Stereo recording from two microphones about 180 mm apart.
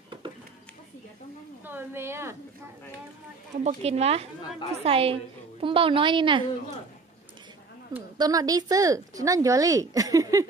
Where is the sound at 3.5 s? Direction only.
35° right (ahead or behind).